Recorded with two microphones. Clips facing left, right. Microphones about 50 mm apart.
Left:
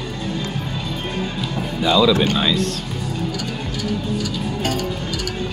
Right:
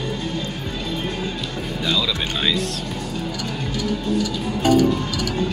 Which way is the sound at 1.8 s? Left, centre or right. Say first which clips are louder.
Left 8 dB; centre.